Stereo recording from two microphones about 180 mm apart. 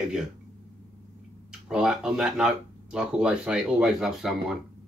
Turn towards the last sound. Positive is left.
turn(degrees=0)  # may be behind; listen again after turning